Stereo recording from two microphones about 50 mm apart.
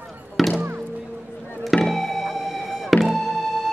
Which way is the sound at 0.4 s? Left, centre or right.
Centre.